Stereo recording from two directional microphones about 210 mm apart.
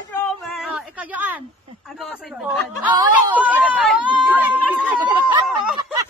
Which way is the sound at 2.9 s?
20° right (ahead or behind).